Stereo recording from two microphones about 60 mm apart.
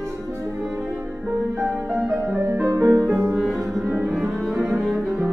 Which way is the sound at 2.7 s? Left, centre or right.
Right.